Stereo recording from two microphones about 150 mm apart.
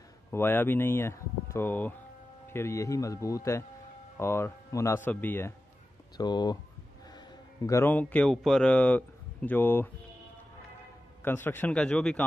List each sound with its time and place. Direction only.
0.3 s speech: 15° left (ahead or behind)
6.1 s a man's voice: 30° left (ahead or behind); by 9.8 s 15° left (ahead or behind)
11.2 s speech: 15° left (ahead or behind)